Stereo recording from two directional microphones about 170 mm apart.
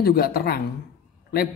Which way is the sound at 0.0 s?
60° left (ahead or behind).